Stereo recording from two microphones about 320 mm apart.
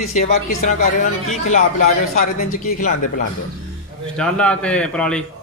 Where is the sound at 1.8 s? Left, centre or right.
Left.